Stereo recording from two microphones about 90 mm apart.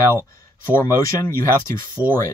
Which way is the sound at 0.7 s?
25° left (ahead or behind).